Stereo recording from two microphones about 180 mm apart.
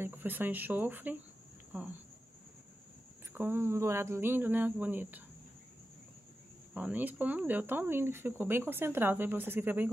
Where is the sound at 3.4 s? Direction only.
15° right (ahead or behind).